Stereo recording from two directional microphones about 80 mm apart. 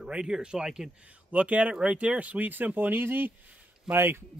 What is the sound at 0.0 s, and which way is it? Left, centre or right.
A man's voice, centre.